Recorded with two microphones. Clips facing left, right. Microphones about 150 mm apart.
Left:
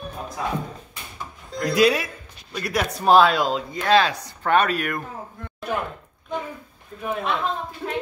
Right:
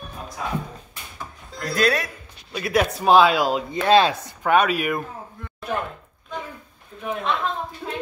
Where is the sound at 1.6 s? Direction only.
10° left (ahead or behind).